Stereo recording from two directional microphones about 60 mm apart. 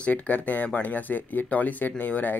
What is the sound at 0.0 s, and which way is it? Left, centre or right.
Speech, left.